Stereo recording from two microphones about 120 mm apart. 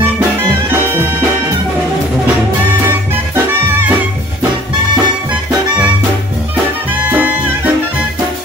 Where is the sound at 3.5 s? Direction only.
15° right (ahead or behind).